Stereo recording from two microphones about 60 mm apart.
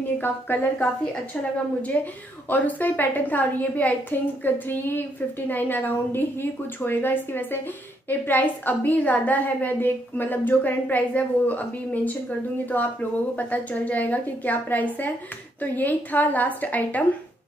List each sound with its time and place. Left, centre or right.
0.2 s a woman's voice: left
1.9 s a woman's voice: left